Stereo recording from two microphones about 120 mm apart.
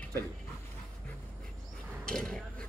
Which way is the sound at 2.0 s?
5° left (ahead or behind).